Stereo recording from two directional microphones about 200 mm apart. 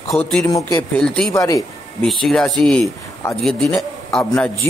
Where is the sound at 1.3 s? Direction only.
15° left (ahead or behind).